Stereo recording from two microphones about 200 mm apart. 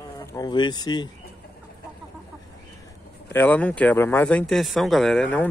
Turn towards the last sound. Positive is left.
turn(degrees=5)  # may be behind; listen again after turning